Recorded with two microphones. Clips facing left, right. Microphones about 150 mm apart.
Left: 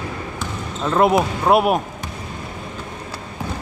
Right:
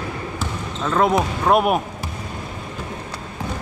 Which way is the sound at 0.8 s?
10° left (ahead or behind).